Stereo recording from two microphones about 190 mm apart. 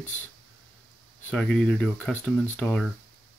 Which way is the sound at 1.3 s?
5° left (ahead or behind).